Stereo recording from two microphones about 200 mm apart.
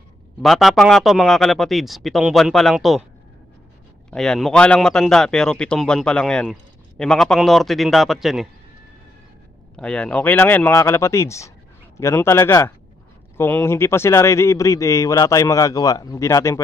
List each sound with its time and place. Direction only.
0.4 s a man's voice: centre (ahead or behind)
4.1 s a man's voice: 5° left (ahead or behind)
9.8 s a man's voice: 5° left (ahead or behind)